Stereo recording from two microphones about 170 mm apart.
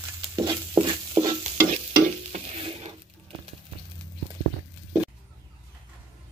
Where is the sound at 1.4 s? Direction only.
40° right (ahead or behind).